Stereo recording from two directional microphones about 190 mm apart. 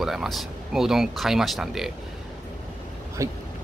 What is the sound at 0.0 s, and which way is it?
Speech, centre (ahead or behind).